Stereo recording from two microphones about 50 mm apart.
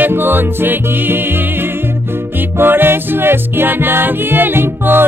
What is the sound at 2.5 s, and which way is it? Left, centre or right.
Music, right.